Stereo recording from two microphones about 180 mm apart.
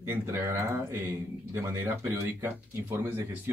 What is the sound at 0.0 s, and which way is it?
Speech, 10° right (ahead or behind).